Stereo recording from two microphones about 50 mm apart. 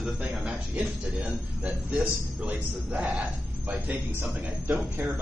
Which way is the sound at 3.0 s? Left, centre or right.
Centre.